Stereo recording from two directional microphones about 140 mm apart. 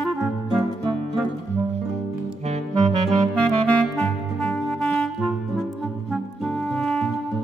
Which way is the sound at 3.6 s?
5° left (ahead or behind).